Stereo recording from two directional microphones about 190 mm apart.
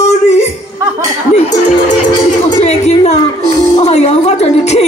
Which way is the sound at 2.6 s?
35° left (ahead or behind).